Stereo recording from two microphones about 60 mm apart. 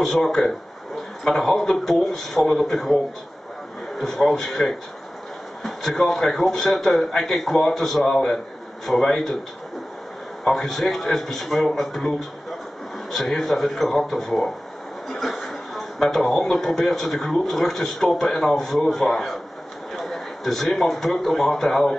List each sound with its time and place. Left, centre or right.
0.0 s a man's voice: centre
4.0 s a man's voice: centre
10.4 s a man's voice: centre